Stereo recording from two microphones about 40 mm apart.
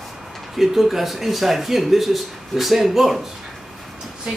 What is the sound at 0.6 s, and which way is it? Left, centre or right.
Speech, centre.